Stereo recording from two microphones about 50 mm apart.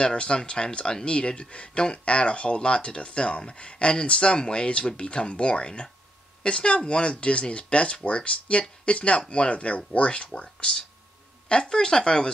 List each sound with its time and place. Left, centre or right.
0.0 s speech: centre